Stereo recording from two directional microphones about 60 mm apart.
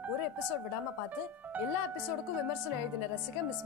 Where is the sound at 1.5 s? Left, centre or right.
Right.